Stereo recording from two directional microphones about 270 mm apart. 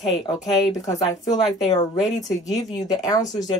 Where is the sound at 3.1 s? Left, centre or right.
Centre.